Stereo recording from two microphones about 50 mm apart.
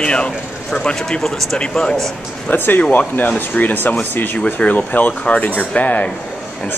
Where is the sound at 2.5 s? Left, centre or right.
Left.